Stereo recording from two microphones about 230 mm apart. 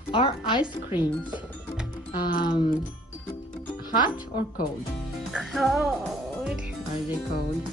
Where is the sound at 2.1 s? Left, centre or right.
Left.